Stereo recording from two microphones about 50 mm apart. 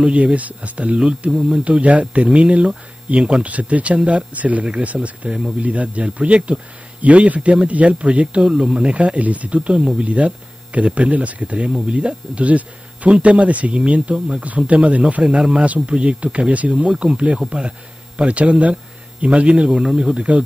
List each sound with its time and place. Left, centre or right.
0.0 s speech: right
3.4 s speech: right
15.2 s speech: centre
15.6 s speech: right